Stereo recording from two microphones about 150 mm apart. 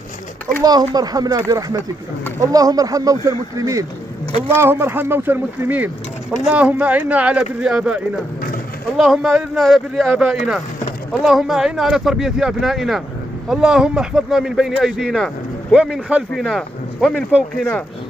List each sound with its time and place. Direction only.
0.7 s speech: 25° right (ahead or behind); by 17.8 s 5° left (ahead or behind)